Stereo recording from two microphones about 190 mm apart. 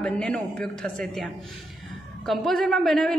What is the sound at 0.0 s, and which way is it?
A woman's voice, 5° left (ahead or behind).